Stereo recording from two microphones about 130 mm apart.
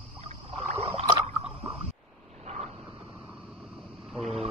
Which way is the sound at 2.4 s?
60° right (ahead or behind).